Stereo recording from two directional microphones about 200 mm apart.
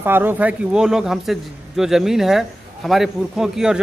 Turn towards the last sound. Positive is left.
turn(degrees=-5)  # may be behind; listen again after turning